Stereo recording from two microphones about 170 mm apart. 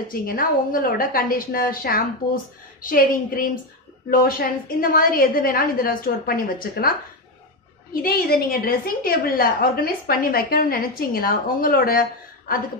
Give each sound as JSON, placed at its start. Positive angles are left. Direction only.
{"t": 0.1, "sound": "a woman's voice", "side_deg": 55}